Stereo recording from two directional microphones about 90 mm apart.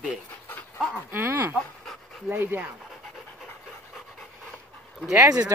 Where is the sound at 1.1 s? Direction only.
25° right (ahead or behind).